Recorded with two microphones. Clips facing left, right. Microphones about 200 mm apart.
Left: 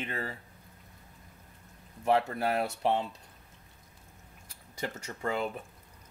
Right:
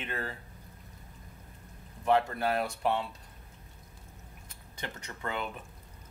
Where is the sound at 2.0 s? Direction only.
30° left (ahead or behind).